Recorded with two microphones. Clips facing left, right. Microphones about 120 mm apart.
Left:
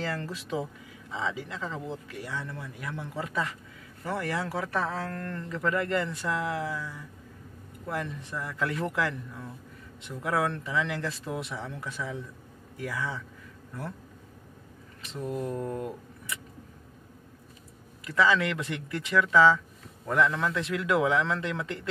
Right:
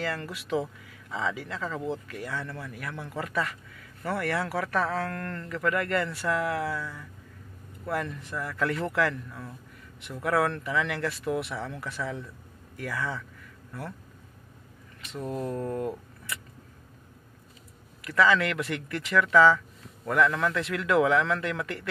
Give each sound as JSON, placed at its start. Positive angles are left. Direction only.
{"t": 0.0, "sound": "a man's voice", "side_deg": 30}
{"t": 15.2, "sound": "speech", "side_deg": -30}
{"t": 15.5, "sound": "a man's voice", "side_deg": 15}
{"t": 18.0, "sound": "a man's voice", "side_deg": 20}